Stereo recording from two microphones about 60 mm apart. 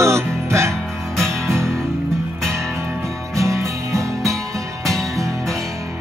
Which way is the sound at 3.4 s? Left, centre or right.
Right.